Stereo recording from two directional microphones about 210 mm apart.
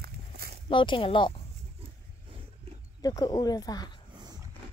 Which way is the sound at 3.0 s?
20° left (ahead or behind).